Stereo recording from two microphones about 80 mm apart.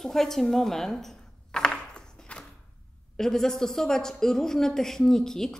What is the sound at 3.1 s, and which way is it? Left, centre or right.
A woman's voice, centre.